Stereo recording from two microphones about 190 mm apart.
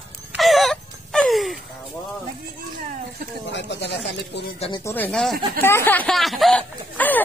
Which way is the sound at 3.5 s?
65° left (ahead or behind).